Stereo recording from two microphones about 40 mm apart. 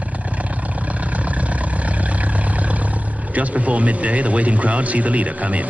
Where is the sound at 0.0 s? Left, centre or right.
Right.